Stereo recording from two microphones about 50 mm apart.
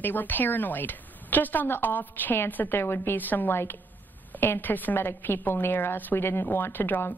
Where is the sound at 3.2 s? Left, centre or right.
Left.